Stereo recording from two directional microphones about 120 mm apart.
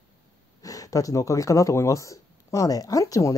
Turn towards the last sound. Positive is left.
turn(degrees=30)  # may be behind; listen again after turning